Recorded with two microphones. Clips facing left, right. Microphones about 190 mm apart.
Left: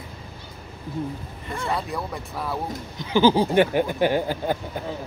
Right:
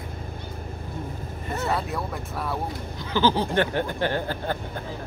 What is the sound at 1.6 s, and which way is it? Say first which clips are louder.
Speech: even; 5° right (ahead or behind).